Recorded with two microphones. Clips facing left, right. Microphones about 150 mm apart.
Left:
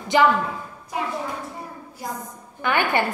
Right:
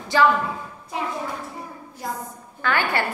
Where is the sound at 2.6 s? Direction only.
20° left (ahead or behind).